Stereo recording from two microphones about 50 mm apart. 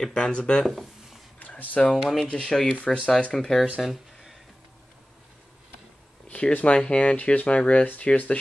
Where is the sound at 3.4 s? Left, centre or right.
Centre.